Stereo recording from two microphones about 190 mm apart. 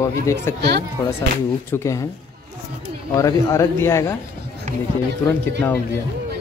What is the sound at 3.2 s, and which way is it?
Speech, 15° left (ahead or behind).